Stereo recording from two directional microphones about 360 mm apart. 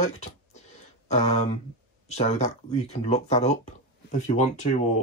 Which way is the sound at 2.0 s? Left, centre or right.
Centre.